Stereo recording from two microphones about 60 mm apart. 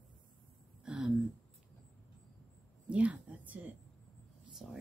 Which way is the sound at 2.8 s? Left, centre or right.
Right.